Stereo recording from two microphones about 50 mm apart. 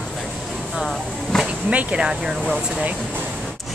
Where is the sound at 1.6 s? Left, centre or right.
Right.